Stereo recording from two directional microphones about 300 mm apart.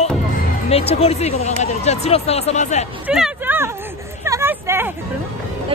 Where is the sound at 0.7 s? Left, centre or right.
Centre.